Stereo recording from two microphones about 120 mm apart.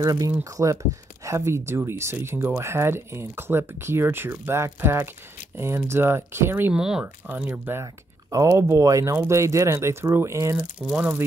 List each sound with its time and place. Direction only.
0.0 s speech: 30° right (ahead or behind)
6.7 s speech: 5° right (ahead or behind)
7.8 s speech: 30° right (ahead or behind)
10.8 s speech: 10° right (ahead or behind)